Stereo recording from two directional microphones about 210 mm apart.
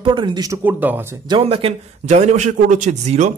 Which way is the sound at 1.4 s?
25° right (ahead or behind).